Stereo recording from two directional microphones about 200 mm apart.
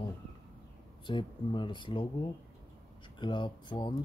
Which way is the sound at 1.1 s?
25° left (ahead or behind).